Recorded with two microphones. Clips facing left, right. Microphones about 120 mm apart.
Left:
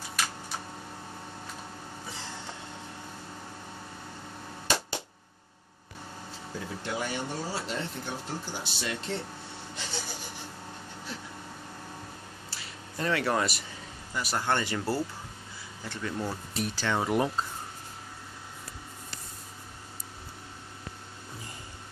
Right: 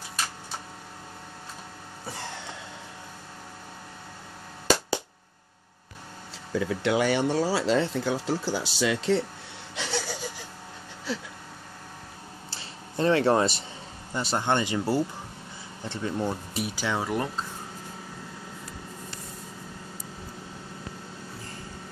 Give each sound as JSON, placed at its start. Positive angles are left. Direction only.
{"t": 6.5, "sound": "speech", "side_deg": -90}
{"t": 9.8, "sound": "a sound", "side_deg": -75}
{"t": 12.4, "sound": "a sound", "side_deg": -30}
{"t": 14.1, "sound": "speech", "side_deg": -25}
{"t": 15.8, "sound": "speech", "side_deg": -25}
{"t": 16.5, "sound": "speech", "side_deg": -10}
{"t": 17.0, "sound": "speech", "side_deg": 5}